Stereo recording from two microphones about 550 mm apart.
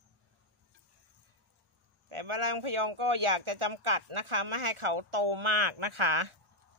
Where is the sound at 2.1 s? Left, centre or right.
Right.